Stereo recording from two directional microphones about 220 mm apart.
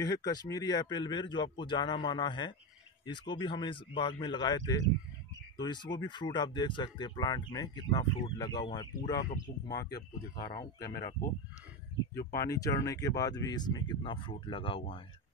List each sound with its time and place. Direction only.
0.0 s speech: 15° left (ahead or behind)
10.3 s speech: 40° left (ahead or behind)
12.2 s speech: 45° left (ahead or behind)
12.4 s speech: 15° left (ahead or behind)